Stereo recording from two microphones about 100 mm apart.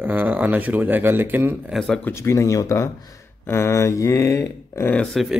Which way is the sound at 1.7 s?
5° left (ahead or behind).